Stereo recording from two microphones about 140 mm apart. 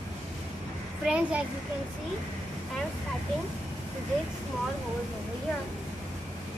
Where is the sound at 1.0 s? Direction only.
10° right (ahead or behind).